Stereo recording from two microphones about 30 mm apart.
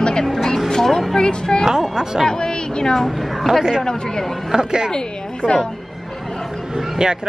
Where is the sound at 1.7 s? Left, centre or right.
Centre.